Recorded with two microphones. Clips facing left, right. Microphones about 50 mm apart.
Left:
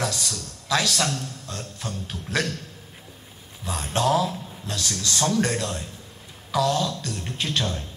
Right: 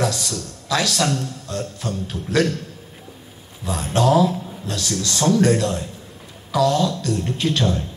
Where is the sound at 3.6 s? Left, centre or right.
Right.